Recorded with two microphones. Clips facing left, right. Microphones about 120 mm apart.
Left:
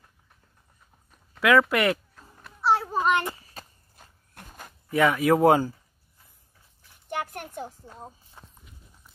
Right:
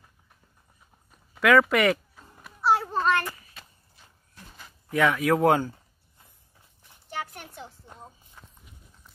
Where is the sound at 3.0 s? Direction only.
20° left (ahead or behind).